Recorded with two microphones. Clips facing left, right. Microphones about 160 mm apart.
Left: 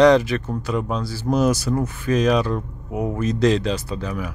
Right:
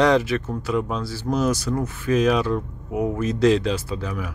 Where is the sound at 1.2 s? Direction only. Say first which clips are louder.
Left 3 dB; 10° left (ahead or behind).